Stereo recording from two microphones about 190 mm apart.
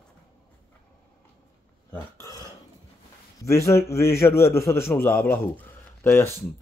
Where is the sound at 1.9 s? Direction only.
20° left (ahead or behind).